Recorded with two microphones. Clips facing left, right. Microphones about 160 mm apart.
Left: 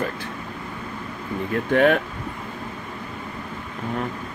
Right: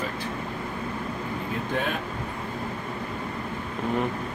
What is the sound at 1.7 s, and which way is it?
Speech, 65° left (ahead or behind).